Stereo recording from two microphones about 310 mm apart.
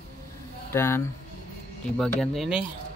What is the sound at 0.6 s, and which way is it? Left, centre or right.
Speech, centre.